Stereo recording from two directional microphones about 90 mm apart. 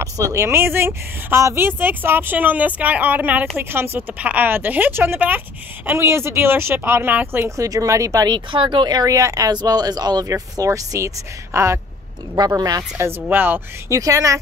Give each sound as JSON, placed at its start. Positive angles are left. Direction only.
{"t": 0.0, "sound": "speech", "side_deg": -35}
{"t": 7.4, "sound": "speech", "side_deg": -35}
{"t": 8.3, "sound": "speech", "side_deg": -70}
{"t": 12.4, "sound": "speech", "side_deg": -45}
{"t": 12.9, "sound": "speech", "side_deg": -25}
{"t": 13.8, "sound": "speech", "side_deg": -35}